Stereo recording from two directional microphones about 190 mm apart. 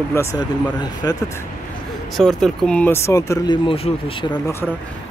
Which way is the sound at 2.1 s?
Centre (ahead or behind).